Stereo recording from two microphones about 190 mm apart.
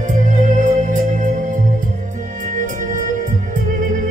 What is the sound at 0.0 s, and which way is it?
Music, 40° right (ahead or behind).